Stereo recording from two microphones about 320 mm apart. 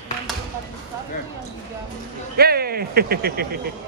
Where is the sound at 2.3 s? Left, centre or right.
Right.